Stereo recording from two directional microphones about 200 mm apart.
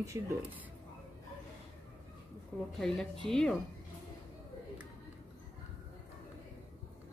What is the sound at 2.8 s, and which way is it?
Speech, 5° left (ahead or behind).